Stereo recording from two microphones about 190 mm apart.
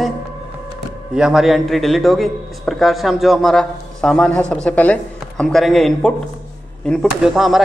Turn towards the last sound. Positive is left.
turn(degrees=0)  # may be behind; listen again after turning